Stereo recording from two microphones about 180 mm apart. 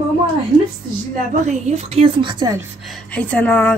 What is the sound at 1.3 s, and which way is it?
A woman's voice, 35° right (ahead or behind).